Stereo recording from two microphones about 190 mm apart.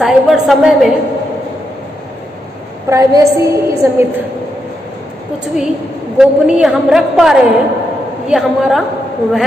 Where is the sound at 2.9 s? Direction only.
15° right (ahead or behind).